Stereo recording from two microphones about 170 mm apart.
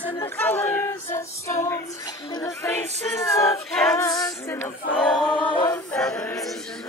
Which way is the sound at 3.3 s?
20° left (ahead or behind).